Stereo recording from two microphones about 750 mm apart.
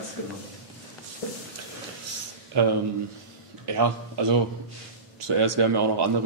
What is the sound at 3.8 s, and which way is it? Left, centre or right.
Speech, right.